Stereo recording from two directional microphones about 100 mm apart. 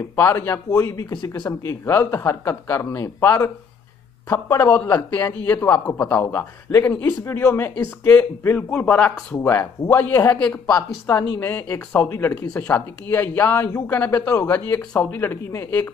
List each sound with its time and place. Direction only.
0.1 s speech: 25° left (ahead or behind); by 1.5 s 45° left (ahead or behind)
1.6 s speech: 30° left (ahead or behind)
10.7 s speech: 35° left (ahead or behind)
11.4 s speech: 20° left (ahead or behind)